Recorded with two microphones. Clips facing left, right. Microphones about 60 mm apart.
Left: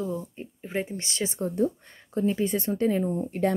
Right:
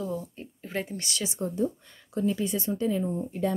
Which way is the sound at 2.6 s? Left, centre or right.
Left.